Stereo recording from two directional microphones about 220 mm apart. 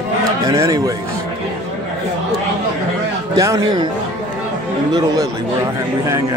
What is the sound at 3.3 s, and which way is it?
Speech, 15° right (ahead or behind).